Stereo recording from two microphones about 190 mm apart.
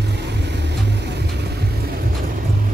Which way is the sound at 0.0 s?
60° right (ahead or behind).